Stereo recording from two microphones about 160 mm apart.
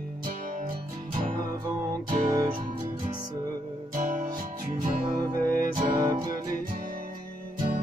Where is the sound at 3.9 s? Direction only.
55° right (ahead or behind).